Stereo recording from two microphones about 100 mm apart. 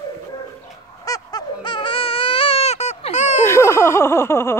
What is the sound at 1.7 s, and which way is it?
Baby cry, 60° left (ahead or behind).